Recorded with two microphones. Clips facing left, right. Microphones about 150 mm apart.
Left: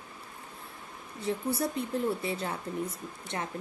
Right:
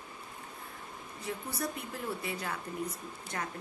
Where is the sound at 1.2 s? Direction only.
30° left (ahead or behind).